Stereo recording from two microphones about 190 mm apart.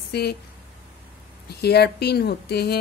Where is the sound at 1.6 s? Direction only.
60° left (ahead or behind).